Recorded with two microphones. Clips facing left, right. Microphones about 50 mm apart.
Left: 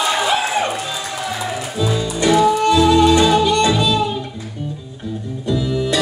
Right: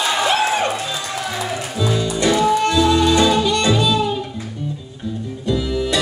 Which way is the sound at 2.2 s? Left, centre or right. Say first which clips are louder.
Left 3 dB; centre.